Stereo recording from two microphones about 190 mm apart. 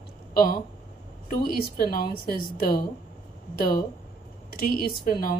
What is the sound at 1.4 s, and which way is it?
Speech, 50° left (ahead or behind).